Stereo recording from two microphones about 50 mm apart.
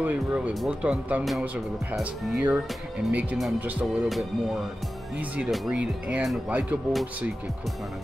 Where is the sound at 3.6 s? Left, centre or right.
Right.